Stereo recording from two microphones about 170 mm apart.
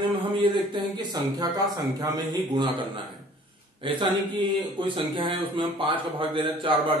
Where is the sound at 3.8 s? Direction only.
25° right (ahead or behind).